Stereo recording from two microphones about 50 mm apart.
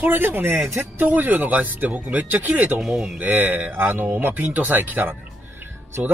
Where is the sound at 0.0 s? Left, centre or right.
Right.